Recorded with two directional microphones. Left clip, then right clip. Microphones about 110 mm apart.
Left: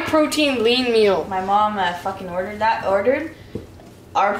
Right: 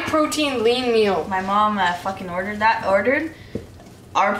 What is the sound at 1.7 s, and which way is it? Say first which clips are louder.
Speech: right 1 dB; 15° right (ahead or behind).